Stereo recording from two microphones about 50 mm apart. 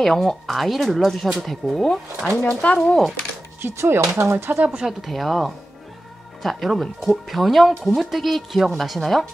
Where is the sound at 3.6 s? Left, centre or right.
Right.